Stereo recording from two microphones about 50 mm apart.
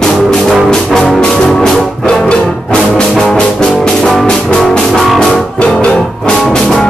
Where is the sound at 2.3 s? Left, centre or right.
Centre.